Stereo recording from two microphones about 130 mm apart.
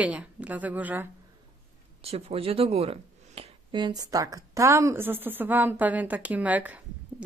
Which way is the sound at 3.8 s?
30° right (ahead or behind).